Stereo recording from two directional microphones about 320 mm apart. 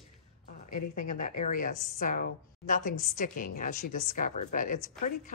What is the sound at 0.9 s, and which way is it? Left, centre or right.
Speech, left.